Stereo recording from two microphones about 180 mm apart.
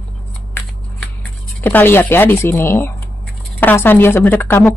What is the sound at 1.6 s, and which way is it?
Speech, 10° left (ahead or behind).